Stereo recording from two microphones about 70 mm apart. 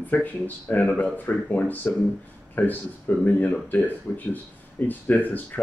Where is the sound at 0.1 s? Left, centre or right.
Left.